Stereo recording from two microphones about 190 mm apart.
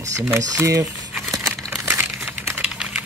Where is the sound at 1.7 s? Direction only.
10° right (ahead or behind).